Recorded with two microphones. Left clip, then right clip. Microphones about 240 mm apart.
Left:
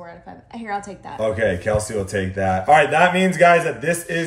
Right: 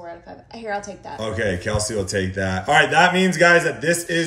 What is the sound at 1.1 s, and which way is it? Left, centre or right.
Speech, centre.